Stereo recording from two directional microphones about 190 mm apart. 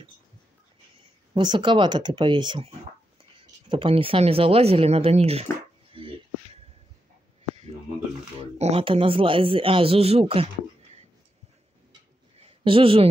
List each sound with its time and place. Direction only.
1.3 s a man's voice: 25° right (ahead or behind)
8.5 s a man's voice: 35° right (ahead or behind)
12.4 s a sound: 30° right (ahead or behind)